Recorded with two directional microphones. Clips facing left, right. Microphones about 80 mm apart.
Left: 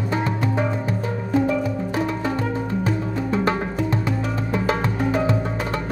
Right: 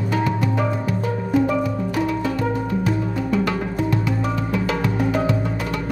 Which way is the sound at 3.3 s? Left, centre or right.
Left.